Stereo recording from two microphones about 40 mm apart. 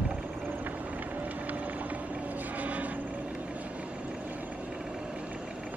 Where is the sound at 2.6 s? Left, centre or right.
Right.